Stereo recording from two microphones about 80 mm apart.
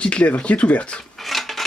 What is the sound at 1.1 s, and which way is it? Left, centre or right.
Filing, centre.